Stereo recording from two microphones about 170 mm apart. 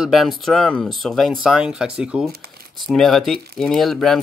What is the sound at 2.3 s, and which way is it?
Shuffling cards, 65° right (ahead or behind).